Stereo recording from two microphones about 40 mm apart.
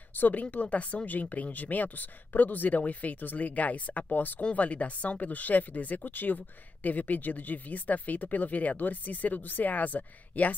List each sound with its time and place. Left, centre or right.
0.1 s speech: left
4.1 s speech: left
4.4 s speech: left